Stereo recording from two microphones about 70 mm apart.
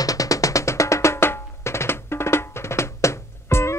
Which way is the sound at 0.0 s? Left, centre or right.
Left.